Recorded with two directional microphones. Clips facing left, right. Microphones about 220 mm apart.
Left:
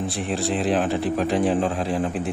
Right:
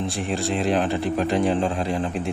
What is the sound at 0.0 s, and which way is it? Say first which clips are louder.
A man's voice: even; centre (ahead or behind).